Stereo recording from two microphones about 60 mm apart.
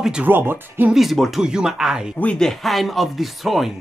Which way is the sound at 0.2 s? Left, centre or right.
Right.